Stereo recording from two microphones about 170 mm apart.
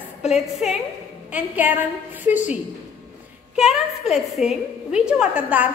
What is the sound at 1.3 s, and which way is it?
A woman's voice, 10° right (ahead or behind).